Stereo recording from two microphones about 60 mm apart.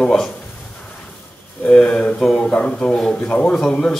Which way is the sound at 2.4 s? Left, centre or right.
Centre.